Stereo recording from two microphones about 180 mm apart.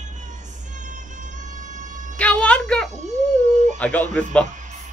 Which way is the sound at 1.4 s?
45° right (ahead or behind).